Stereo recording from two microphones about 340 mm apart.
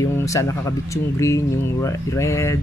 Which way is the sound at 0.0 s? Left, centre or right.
Centre.